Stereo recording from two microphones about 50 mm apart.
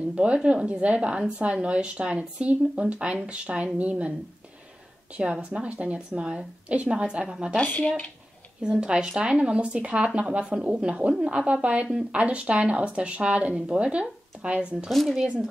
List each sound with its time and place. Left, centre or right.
0.1 s speech: right
5.1 s speech: right
8.6 s speech: centre
14.9 s speech: centre